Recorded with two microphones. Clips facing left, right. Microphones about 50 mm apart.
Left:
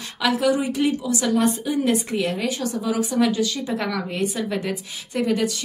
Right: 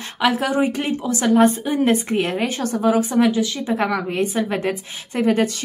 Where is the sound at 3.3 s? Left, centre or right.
Right.